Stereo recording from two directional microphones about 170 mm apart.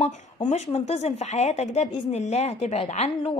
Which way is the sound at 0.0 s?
40° left (ahead or behind).